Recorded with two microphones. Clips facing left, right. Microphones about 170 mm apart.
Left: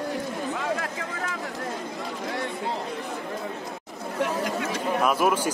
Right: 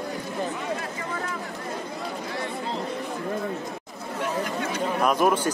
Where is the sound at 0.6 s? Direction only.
90° left.